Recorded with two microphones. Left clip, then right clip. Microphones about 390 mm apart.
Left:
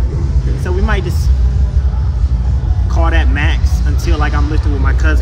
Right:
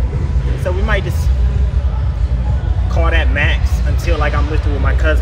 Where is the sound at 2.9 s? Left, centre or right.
Centre.